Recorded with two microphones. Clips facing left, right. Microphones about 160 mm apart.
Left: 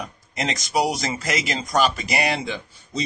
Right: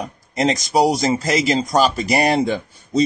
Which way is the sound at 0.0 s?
35° right (ahead or behind).